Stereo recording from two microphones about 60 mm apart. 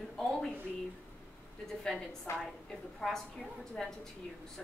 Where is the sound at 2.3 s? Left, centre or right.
Left.